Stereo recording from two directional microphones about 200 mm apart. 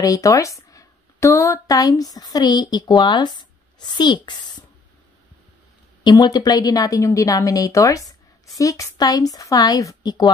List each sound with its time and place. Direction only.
0.0 s speech: 15° left (ahead or behind)
6.0 s a woman's voice: 20° left (ahead or behind)